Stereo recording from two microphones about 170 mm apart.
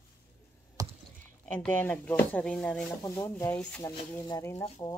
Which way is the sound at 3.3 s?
10° left (ahead or behind).